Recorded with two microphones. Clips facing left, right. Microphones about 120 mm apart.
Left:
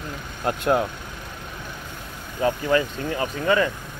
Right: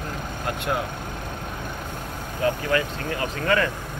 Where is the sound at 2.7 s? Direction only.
20° left (ahead or behind).